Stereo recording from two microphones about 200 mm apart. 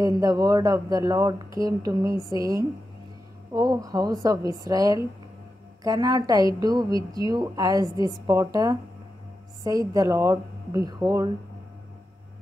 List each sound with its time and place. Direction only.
0.2 s a woman's voice: 20° right (ahead or behind)